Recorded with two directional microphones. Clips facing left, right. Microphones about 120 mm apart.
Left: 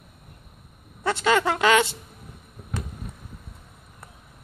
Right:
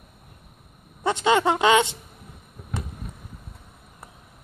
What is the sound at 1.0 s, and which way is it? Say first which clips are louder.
Speech: right 2 dB; 20° right (ahead or behind).